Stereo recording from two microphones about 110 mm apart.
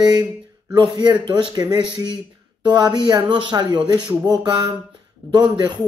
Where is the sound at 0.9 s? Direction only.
40° right (ahead or behind).